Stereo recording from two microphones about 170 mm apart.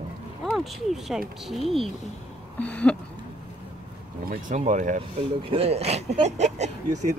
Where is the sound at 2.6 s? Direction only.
10° left (ahead or behind).